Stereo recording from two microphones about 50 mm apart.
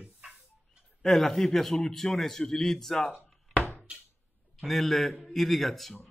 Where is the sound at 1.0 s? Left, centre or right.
Centre.